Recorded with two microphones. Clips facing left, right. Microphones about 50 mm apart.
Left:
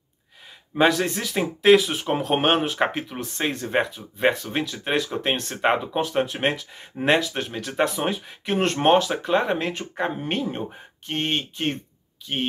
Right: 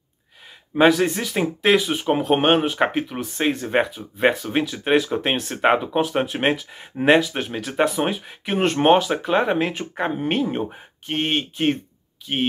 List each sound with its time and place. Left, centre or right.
0.7 s speech: centre